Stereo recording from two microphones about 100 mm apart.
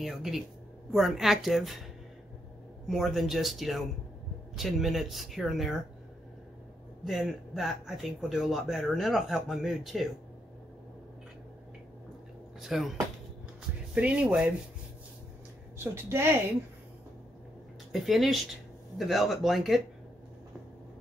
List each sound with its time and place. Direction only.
0.0 s speech: centre (ahead or behind)
2.9 s speech: centre (ahead or behind)
7.1 s speech: centre (ahead or behind)
12.5 s speech: 5° right (ahead or behind)
13.9 s speech: 10° right (ahead or behind)
15.8 s a woman's voice: 25° right (ahead or behind)
17.9 s speech: centre (ahead or behind)